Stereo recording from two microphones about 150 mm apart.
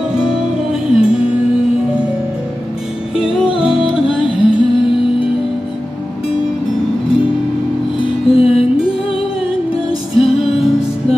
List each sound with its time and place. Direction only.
0.1 s music: 5° right (ahead or behind)
3.5 s music: 5° right (ahead or behind)
8.0 s music: 40° left (ahead or behind)
10.1 s music: 40° left (ahead or behind)